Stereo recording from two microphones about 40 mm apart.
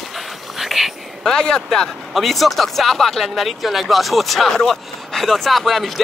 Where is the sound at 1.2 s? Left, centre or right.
Centre.